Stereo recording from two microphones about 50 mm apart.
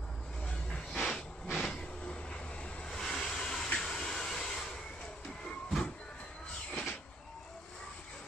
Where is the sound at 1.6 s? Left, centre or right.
Centre.